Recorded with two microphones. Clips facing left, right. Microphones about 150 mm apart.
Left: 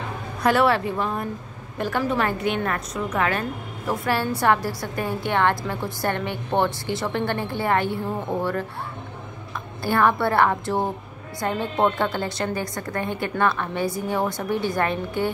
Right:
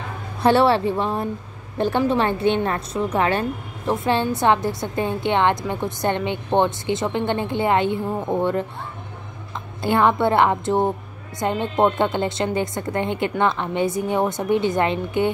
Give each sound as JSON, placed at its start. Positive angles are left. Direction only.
{"t": 0.4, "sound": "a woman's voice", "side_deg": -30}
{"t": 9.8, "sound": "a woman's voice", "side_deg": -20}